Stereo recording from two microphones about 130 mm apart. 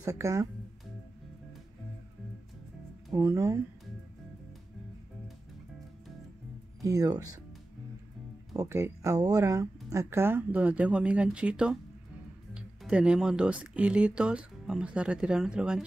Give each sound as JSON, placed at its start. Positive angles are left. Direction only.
{"t": 0.0, "sound": "speech", "side_deg": -25}
{"t": 3.1, "sound": "speech", "side_deg": -25}
{"t": 6.8, "sound": "speech", "side_deg": -25}
{"t": 8.5, "sound": "speech", "side_deg": -20}